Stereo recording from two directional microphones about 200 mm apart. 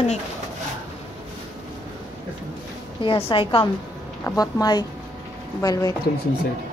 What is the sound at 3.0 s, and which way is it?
Speech, 25° left (ahead or behind).